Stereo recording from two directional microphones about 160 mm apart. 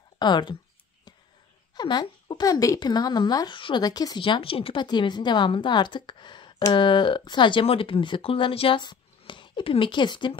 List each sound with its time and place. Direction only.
0.2 s speech: 30° left (ahead or behind)
1.8 s speech: 25° left (ahead or behind)